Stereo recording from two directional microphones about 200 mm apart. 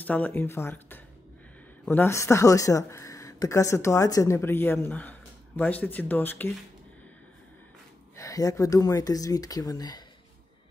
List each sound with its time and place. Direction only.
0.0 s speech: 10° left (ahead or behind)
8.2 s speech: 15° left (ahead or behind)